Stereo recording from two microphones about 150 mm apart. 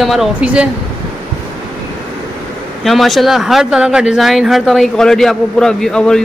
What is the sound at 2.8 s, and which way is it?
Speech, centre (ahead or behind).